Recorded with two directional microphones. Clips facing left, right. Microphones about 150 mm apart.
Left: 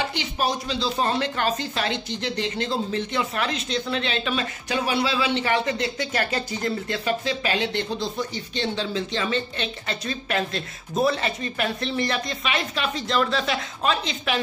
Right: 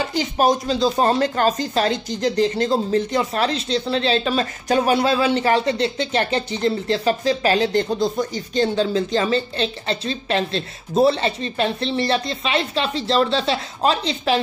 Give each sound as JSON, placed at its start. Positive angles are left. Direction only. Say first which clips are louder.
{"t": 0.0, "sound": "speech", "louder": "right 7 dB", "side_deg": -40}